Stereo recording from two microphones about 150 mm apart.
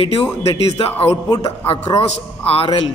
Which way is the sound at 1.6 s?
40° left (ahead or behind).